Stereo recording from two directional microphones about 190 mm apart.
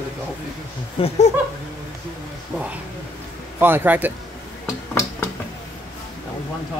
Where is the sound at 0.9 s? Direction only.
30° left (ahead or behind).